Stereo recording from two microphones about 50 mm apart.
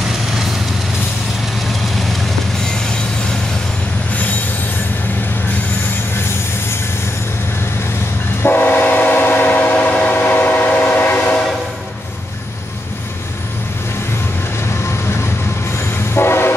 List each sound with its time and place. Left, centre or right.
8.4 s train: left
10.1 s train: left
16.2 s train horn: left